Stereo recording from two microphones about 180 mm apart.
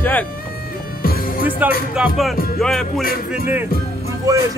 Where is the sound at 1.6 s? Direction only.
10° right (ahead or behind).